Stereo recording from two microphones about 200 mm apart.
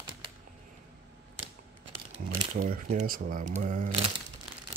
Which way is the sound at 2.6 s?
40° right (ahead or behind).